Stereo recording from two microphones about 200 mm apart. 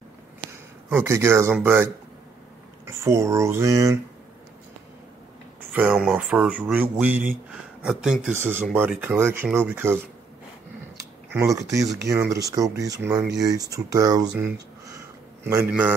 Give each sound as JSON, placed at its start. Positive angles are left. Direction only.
{"t": 0.9, "sound": "speech", "side_deg": -15}
{"t": 2.9, "sound": "speech", "side_deg": -15}
{"t": 5.6, "sound": "speech", "side_deg": -5}
{"t": 11.3, "sound": "speech", "side_deg": -15}
{"t": 15.4, "sound": "speech", "side_deg": -10}